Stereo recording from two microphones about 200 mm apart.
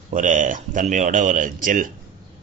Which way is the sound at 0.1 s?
40° right (ahead or behind).